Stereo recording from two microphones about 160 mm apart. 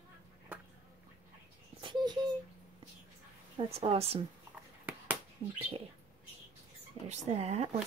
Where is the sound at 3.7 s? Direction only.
40° right (ahead or behind).